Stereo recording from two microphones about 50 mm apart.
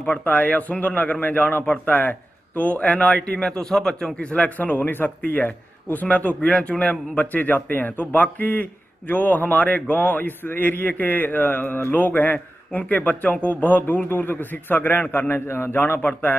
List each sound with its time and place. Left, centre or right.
0.2 s a man's voice: left
3.3 s a man's voice: centre; by 16.1 s left